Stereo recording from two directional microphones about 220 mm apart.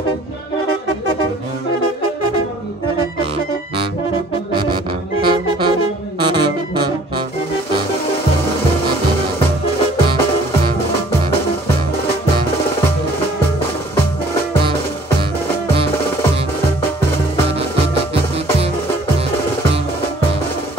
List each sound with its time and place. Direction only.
5.2 s saxophone: 20° right (ahead or behind)